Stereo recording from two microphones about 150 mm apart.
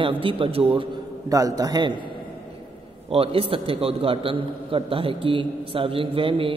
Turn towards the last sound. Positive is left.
turn(degrees=-35)  # may be behind; listen again after turning